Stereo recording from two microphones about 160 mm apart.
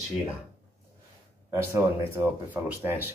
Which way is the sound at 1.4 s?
15° right (ahead or behind).